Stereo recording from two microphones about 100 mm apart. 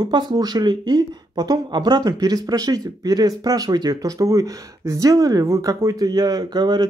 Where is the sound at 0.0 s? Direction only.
45° right (ahead or behind).